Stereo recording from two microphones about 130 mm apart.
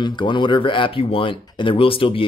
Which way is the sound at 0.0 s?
35° left (ahead or behind).